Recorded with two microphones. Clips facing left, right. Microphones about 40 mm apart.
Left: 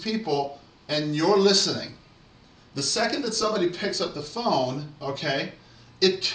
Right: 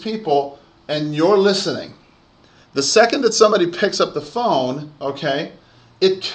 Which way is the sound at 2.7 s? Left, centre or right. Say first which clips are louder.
Right 12 dB; right.